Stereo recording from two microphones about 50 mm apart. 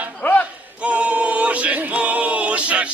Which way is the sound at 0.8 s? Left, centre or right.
Right.